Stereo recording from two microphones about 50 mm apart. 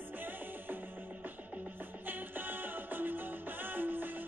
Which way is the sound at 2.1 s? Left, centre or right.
Right.